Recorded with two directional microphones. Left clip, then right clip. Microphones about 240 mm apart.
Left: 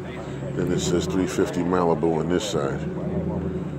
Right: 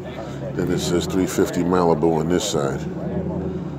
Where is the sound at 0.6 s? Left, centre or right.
Centre.